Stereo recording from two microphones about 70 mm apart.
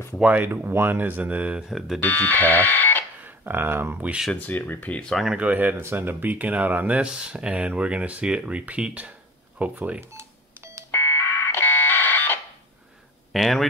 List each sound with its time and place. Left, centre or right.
0.2 s speech: right
0.5 s speech: right
1.7 s speech: centre
2.0 s speech: left
3.2 s speech: right
4.3 s speech: left
5.3 s speech: right
9.9 s telephone dialing: right
10.9 s fire alarm: left
13.3 s speech: centre